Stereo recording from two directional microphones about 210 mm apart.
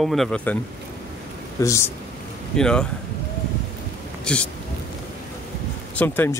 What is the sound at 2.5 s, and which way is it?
Speech, 5° left (ahead or behind).